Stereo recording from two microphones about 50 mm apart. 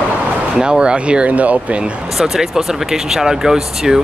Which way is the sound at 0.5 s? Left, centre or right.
Centre.